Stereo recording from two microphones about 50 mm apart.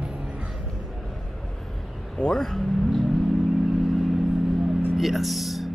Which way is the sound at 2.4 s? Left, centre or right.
Centre.